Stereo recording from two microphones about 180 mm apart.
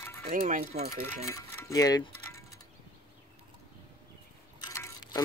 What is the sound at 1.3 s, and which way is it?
Music, 20° left (ahead or behind).